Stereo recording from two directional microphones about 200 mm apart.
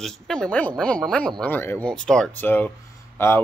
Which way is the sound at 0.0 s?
5° left (ahead or behind).